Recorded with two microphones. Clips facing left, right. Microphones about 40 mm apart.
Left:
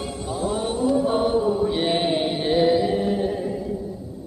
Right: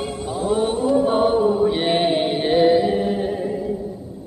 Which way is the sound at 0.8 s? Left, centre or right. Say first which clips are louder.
Right 2 dB; right.